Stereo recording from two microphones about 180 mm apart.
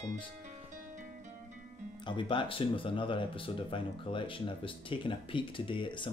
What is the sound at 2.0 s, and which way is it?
Speech, 25° left (ahead or behind).